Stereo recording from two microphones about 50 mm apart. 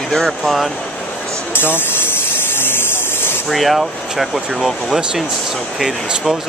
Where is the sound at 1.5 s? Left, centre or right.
Left.